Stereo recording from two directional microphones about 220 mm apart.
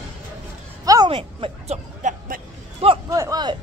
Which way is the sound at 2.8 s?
25° right (ahead or behind).